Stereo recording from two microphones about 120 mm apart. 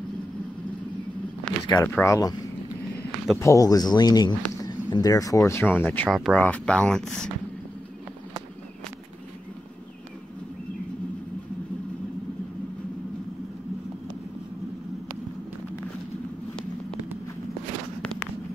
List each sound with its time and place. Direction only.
1.5 s a sound: 10° left (ahead or behind)
2.0 s speech: 25° left (ahead or behind)
3.3 s speech: 25° left (ahead or behind)
6.0 s speech: 5° right (ahead or behind)
6.3 s speech: 10° left (ahead or behind)